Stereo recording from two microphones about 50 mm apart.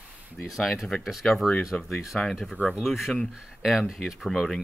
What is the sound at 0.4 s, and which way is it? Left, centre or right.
Speech, centre.